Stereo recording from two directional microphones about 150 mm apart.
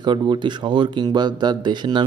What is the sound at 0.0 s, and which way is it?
Speech, 30° right (ahead or behind).